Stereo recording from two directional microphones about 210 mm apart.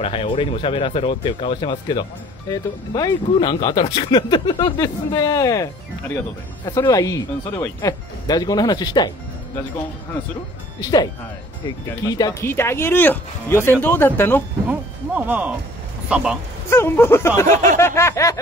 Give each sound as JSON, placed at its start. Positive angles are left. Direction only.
{"t": 0.0, "sound": "speech", "side_deg": 25}
{"t": 10.8, "sound": "speech", "side_deg": 20}
{"t": 14.7, "sound": "speech", "side_deg": -10}
{"t": 16.7, "sound": "speech", "side_deg": 10}